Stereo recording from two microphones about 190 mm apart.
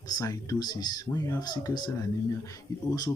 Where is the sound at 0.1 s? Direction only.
20° left (ahead or behind).